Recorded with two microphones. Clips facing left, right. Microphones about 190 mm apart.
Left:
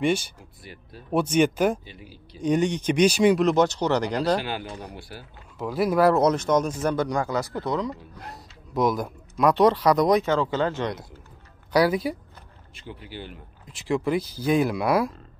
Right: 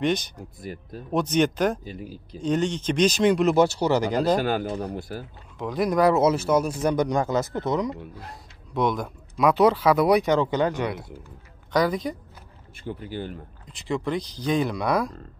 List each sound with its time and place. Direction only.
0.0 s speech: 10° left (ahead or behind)
0.6 s speech: 45° right (ahead or behind)
1.1 s speech: 10° left (ahead or behind)
1.9 s speech: 45° right (ahead or behind)
2.4 s speech: 15° left (ahead or behind)
3.3 s speech: 5° right (ahead or behind)
4.4 s speech: 45° right (ahead or behind)
5.6 s speech: 5° left (ahead or behind); by 7.9 s 20° right (ahead or behind)
8.3 s speech: centre (ahead or behind)
11.7 s speech: 5° left (ahead or behind)
12.8 s speech: 45° right (ahead or behind)
13.7 s speech: centre (ahead or behind)